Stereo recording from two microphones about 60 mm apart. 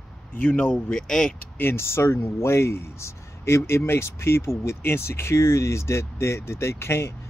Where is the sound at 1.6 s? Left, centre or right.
Left.